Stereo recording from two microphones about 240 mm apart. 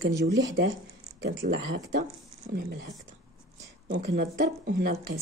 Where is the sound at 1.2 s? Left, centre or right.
Right.